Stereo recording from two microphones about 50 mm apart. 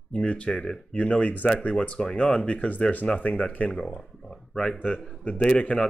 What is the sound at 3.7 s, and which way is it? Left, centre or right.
Speech, centre.